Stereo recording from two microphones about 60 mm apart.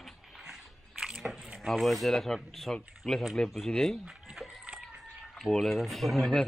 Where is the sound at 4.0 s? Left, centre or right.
Centre.